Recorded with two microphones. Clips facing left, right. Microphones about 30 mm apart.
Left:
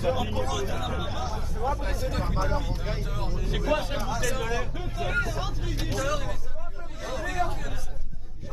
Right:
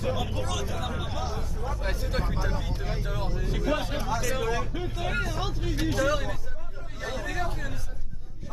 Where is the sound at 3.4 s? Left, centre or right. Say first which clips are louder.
Left 2 dB; left.